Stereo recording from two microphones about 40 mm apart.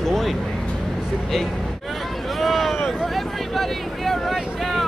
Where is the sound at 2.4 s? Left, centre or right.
Centre.